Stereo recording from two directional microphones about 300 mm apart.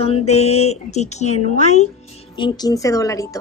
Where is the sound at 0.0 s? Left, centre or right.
Centre.